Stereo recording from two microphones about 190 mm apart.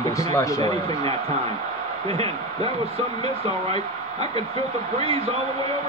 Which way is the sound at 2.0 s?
30° right (ahead or behind).